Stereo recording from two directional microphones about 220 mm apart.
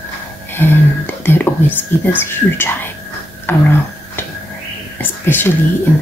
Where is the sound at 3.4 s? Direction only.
10° left (ahead or behind).